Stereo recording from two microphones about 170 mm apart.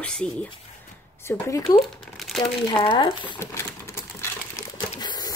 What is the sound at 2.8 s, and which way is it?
Speech, 25° left (ahead or behind).